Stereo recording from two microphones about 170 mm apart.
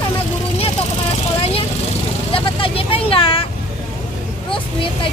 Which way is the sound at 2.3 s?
35° left (ahead or behind).